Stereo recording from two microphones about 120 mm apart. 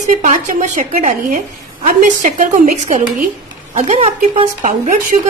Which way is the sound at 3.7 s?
70° right (ahead or behind).